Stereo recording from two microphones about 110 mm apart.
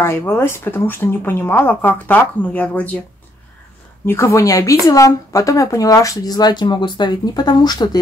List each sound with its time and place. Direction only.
0.0 s speech: 20° left (ahead or behind)
4.0 s speech: 25° left (ahead or behind); by 8.0 s 40° left (ahead or behind)